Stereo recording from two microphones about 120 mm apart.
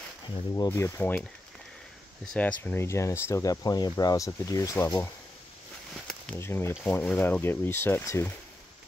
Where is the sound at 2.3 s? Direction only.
10° left (ahead or behind); by 4.9 s 25° left (ahead or behind).